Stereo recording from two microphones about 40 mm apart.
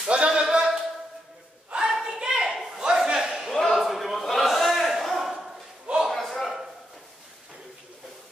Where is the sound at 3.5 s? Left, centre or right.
Centre.